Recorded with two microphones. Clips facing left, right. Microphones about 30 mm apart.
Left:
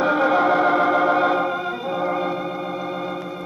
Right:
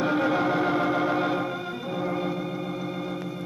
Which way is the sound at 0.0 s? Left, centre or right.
Centre.